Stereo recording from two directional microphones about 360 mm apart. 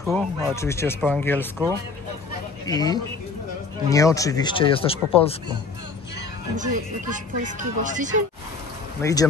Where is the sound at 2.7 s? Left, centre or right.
Centre.